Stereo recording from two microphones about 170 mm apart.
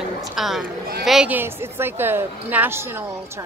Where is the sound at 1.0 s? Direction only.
5° right (ahead or behind).